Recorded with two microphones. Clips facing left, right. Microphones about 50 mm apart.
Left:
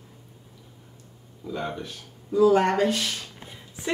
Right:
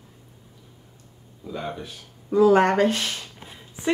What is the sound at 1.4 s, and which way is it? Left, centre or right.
Speech, centre.